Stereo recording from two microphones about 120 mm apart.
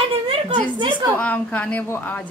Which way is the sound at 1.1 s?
10° left (ahead or behind).